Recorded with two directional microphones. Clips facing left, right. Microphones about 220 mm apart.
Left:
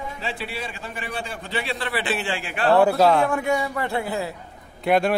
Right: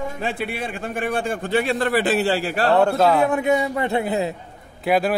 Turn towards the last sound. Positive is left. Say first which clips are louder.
# even
turn(degrees=0)  # may be behind; listen again after turning